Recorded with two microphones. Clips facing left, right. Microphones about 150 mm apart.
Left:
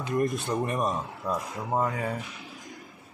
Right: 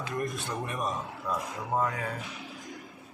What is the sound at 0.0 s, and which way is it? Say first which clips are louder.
Speech: left 6 dB; 25° left (ahead or behind).